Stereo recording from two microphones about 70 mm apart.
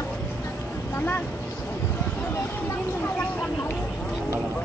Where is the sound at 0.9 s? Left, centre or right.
Left.